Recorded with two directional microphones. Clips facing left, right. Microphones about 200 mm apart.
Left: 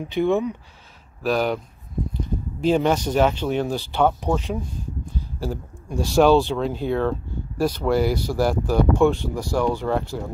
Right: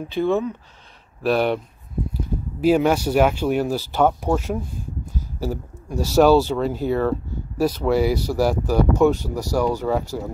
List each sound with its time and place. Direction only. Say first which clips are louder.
0.0 s speech: even; 15° left (ahead or behind)
1.2 s speech: right 2 dB; centre (ahead or behind)